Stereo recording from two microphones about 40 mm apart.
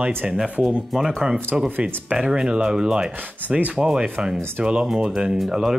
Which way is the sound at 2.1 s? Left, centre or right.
Right.